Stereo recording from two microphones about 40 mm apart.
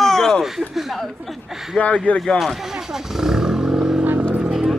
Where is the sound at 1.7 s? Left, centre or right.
Left.